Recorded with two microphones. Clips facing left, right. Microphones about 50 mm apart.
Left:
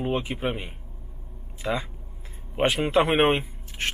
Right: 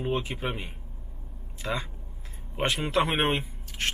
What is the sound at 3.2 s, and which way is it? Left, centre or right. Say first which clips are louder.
Speech: left 6 dB; left.